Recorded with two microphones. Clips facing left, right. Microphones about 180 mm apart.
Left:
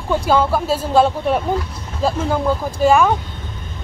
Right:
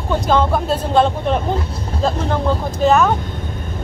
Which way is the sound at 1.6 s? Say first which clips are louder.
Right 3 dB; 30° right (ahead or behind).